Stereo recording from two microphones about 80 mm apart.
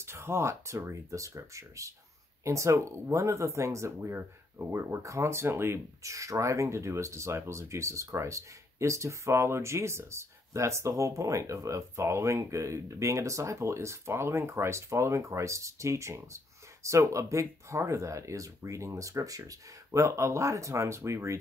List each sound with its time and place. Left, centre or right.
0.0 s speech: right